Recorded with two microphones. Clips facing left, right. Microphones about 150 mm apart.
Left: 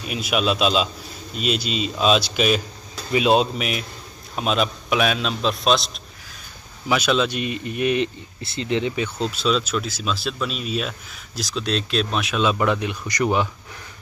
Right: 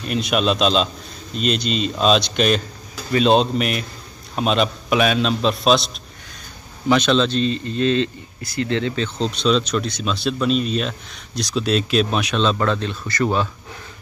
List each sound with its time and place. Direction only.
0.0 s speech: 5° left (ahead or behind)
6.9 s speech: 10° left (ahead or behind)